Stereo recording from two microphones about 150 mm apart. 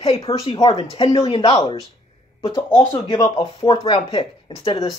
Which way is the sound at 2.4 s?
20° left (ahead or behind).